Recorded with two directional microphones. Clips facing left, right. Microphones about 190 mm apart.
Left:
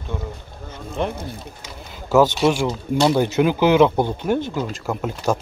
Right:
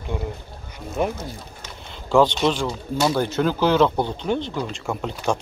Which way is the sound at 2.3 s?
10° left (ahead or behind).